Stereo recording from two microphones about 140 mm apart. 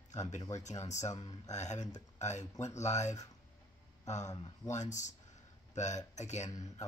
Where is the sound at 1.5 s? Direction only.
55° left (ahead or behind).